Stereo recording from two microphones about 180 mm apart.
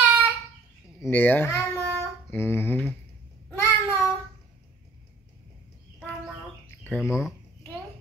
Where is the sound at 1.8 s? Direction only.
15° right (ahead or behind).